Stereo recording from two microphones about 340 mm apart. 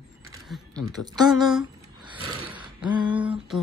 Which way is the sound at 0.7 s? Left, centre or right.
Centre.